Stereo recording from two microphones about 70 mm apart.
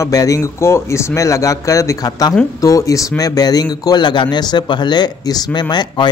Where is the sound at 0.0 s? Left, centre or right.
Left.